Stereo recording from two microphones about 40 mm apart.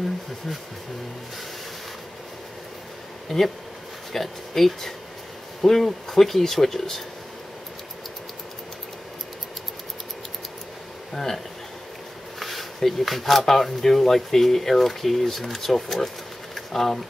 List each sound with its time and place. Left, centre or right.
3.3 s speech: centre
11.1 s speech: centre
16.5 s a sound: centre